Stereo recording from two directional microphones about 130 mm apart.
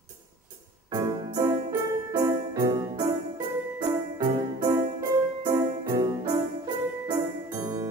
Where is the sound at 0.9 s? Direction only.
30° right (ahead or behind).